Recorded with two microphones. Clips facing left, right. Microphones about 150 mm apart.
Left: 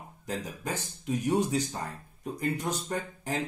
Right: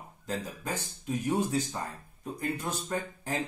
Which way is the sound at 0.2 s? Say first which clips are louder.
Even; 15° left (ahead or behind).